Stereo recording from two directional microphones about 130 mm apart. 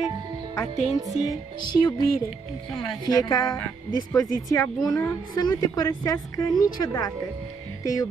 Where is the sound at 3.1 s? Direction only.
30° left (ahead or behind).